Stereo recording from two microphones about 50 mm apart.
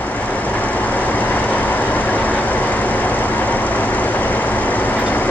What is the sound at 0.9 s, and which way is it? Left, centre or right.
Vehicle, left.